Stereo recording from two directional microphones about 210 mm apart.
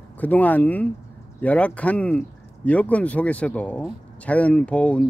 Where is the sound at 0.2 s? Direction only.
10° left (ahead or behind).